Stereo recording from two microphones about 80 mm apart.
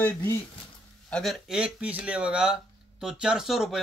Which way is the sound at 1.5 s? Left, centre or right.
Centre.